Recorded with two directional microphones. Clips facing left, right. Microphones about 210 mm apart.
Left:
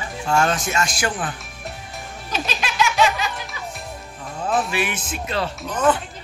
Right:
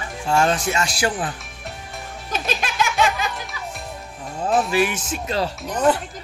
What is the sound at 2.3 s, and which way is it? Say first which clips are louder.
Music: right 1 dB; 50° right (ahead or behind).